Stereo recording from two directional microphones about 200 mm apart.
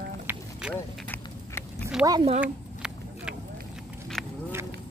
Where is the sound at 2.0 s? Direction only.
20° right (ahead or behind).